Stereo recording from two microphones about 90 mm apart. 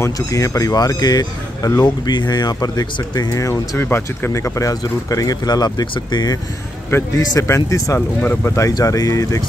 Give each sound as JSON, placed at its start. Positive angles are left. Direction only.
{"t": 0.0, "sound": "speech", "side_deg": 35}
{"t": 7.2, "sound": "speech", "side_deg": 35}
{"t": 8.2, "sound": "speech", "side_deg": 20}
{"t": 8.5, "sound": "speech", "side_deg": 35}